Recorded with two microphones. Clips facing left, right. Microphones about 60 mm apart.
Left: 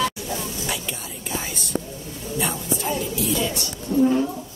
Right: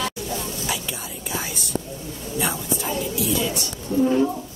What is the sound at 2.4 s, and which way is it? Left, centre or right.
Music, centre.